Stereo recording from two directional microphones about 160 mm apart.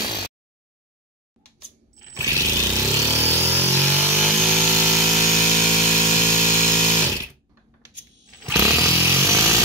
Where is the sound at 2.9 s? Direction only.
15° right (ahead or behind).